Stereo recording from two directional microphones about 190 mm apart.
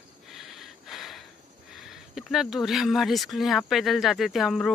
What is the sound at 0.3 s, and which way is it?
Snort, centre (ahead or behind).